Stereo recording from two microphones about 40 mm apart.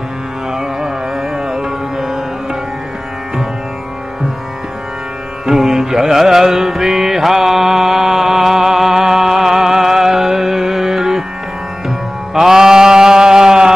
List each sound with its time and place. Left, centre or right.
0.6 s carnatic music: centre
1.5 s music: centre
5.5 s music: centre
12.4 s mantra: centre